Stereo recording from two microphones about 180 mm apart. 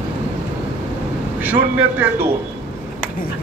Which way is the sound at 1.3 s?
10° right (ahead or behind).